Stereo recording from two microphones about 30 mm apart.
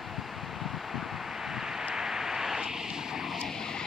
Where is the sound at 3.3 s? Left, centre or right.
Centre.